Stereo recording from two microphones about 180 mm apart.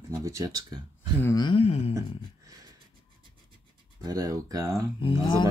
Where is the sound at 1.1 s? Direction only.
15° left (ahead or behind).